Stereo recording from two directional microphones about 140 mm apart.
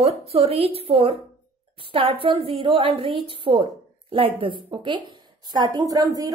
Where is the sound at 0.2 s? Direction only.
45° right (ahead or behind).